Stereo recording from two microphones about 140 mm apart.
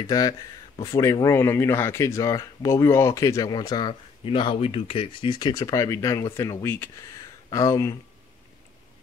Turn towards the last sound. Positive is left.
turn(degrees=20)  # may be behind; listen again after turning